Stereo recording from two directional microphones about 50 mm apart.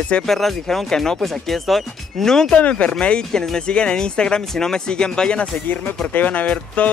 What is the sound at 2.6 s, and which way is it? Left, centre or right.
Speech, left.